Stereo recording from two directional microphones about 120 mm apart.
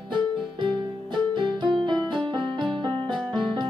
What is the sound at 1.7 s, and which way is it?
Music, 5° left (ahead or behind).